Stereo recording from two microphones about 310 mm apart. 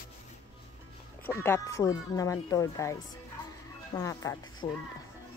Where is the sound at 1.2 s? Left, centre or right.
Centre.